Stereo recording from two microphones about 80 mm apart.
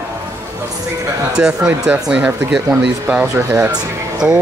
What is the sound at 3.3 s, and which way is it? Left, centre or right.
Speech, right.